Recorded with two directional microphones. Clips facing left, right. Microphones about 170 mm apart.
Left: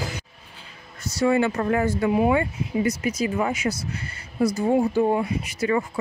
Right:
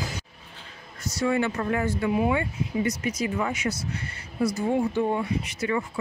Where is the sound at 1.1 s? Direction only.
30° left (ahead or behind).